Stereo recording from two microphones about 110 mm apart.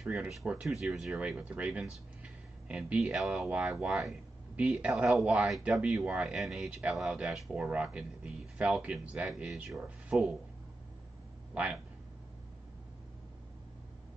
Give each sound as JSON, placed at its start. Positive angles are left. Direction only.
{"t": 0.0, "sound": "speech", "side_deg": -5}
{"t": 11.5, "sound": "speech", "side_deg": -10}